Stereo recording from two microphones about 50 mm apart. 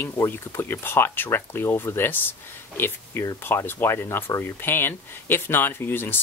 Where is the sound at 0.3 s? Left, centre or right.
Left.